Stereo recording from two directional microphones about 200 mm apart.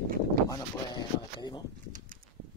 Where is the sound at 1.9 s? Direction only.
40° right (ahead or behind).